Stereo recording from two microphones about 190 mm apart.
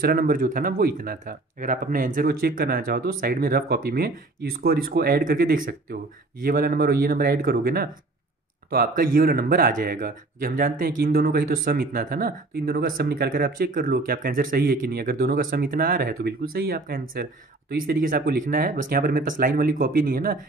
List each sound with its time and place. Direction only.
0.0 s speech: 50° right (ahead or behind)